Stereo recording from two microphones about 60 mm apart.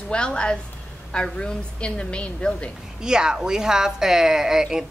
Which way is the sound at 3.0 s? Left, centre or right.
Centre.